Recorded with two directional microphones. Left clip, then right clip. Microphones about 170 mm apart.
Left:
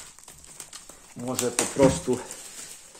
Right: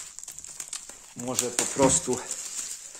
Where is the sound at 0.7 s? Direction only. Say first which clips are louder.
Right 4 dB; 30° right (ahead or behind).